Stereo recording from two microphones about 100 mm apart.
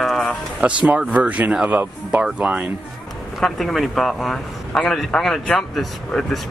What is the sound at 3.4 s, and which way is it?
A man's voice, centre (ahead or behind).